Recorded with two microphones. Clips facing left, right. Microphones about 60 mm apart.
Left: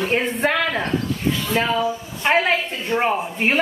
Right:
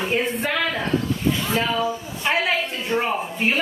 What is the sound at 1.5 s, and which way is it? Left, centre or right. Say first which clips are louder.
A woman's voice: left 2 dB; centre.